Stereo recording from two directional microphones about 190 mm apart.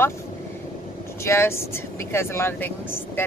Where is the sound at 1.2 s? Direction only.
15° left (ahead or behind).